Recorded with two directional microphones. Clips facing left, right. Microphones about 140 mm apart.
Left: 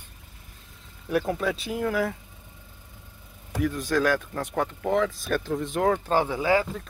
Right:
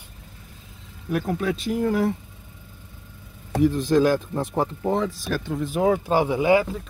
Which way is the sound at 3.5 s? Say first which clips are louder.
Right 6 dB; 30° right (ahead or behind).